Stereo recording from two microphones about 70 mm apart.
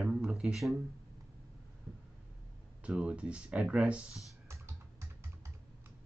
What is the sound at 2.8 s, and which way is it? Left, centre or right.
Speech, centre.